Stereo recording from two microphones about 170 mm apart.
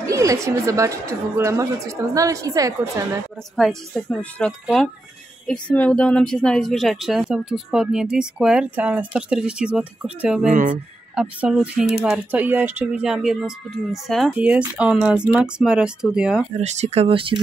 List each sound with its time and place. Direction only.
0.0 s a woman's voice: 20° right (ahead or behind)
3.5 s speech: 5° left (ahead or behind)
10.5 s speech: 50° right (ahead or behind)
11.1 s speech: 5° right (ahead or behind)
16.5 s speech: 40° right (ahead or behind)